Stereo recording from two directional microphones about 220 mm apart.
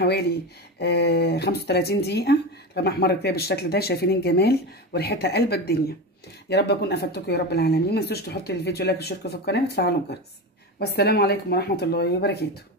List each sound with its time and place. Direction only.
0.0 s speech: 50° left (ahead or behind)